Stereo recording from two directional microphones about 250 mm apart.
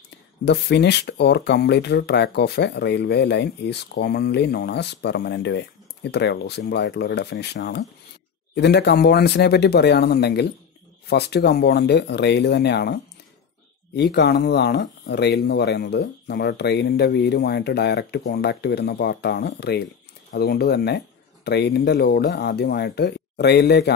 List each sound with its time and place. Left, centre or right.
0.5 s speech: left